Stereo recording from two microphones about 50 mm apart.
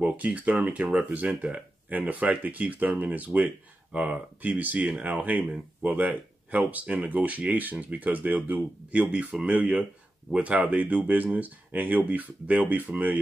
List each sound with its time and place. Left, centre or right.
0.0 s speech: right